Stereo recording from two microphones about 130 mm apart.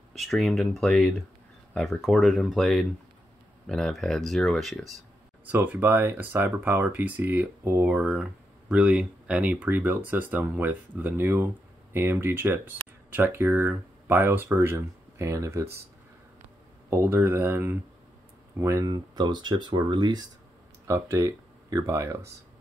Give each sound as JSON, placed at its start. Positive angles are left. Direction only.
{"t": 0.1, "sound": "speech", "side_deg": 0}
{"t": 5.4, "sound": "speech", "side_deg": -15}
{"t": 16.9, "sound": "speech", "side_deg": -20}
{"t": 20.8, "sound": "speech", "side_deg": -20}